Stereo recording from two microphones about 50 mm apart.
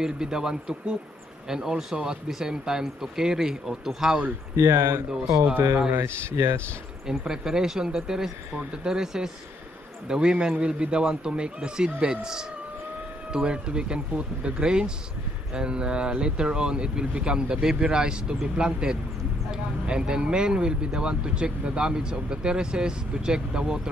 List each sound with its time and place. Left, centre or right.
0.0 s speech: centre
4.6 s speech: right
5.9 s speech: right
7.1 s speech: centre